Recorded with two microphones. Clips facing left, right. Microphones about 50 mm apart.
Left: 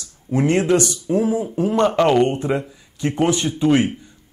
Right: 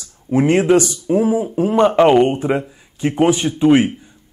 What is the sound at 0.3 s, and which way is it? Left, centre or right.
Speech, centre.